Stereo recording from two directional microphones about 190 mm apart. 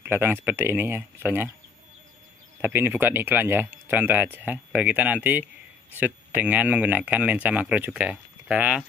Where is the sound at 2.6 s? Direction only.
10° right (ahead or behind).